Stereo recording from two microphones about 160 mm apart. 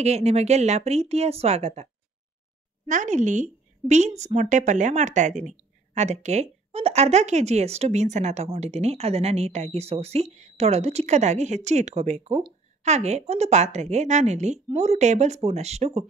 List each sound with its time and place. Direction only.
0.0 s speech: 40° right (ahead or behind)
2.9 s a woman's voice: 50° right (ahead or behind)